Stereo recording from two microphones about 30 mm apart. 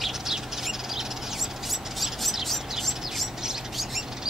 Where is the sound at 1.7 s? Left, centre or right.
Centre.